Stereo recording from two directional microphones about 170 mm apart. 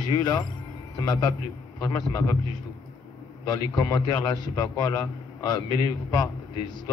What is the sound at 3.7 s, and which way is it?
A man's voice, 25° left (ahead or behind).